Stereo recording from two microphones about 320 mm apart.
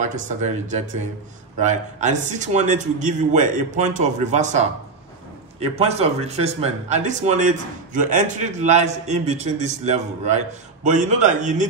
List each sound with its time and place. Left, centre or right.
0.0 s speech: right